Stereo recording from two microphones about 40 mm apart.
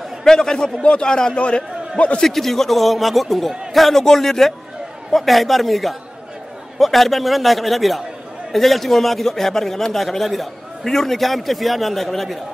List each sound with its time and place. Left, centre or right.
0.2 s a man's voice: centre
2.2 s a man's voice: centre